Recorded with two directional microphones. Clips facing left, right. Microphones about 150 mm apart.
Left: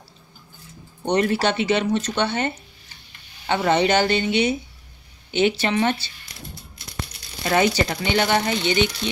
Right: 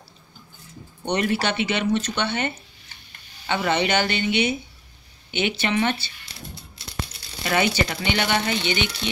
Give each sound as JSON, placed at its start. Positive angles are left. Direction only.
{"t": 1.0, "sound": "speech", "side_deg": 35}
{"t": 7.4, "sound": "speech", "side_deg": 35}